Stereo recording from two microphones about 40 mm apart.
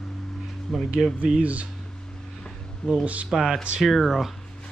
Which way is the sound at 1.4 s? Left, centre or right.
Right.